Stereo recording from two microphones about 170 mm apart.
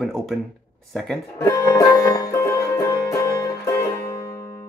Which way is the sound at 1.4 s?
20° left (ahead or behind).